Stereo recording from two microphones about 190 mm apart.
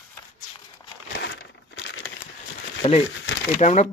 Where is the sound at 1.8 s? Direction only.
70° left (ahead or behind).